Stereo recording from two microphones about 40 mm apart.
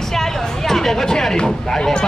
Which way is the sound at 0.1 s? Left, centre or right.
Centre.